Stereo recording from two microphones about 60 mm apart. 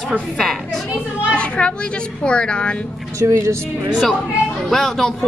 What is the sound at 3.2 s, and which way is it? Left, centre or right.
Speech, right.